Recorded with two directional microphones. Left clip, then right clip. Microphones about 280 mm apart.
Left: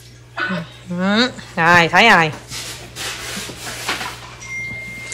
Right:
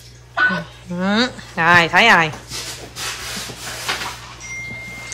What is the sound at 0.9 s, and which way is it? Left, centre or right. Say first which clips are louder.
Speech: left 2 dB; centre.